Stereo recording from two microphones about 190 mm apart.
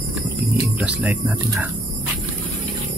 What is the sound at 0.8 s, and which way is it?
Speech, 5° right (ahead or behind).